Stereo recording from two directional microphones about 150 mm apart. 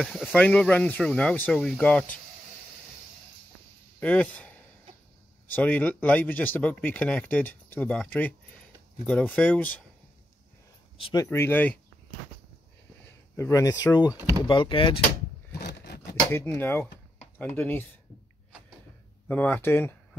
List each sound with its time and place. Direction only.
0.0 s speech: centre (ahead or behind)
4.0 s speech: 10° left (ahead or behind)
11.0 s speech: 35° left (ahead or behind)
11.2 s speech: 15° left (ahead or behind)
13.4 s speech: 20° left (ahead or behind)
14.1 s speech: 20° right (ahead or behind)
14.5 s speech: 35° left (ahead or behind)
15.6 s scrape: 90° left
16.3 s speech: 15° left (ahead or behind)
19.2 s speech: 10° left (ahead or behind)